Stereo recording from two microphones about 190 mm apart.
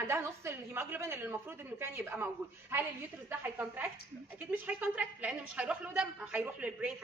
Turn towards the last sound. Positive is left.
turn(degrees=-5)  # may be behind; listen again after turning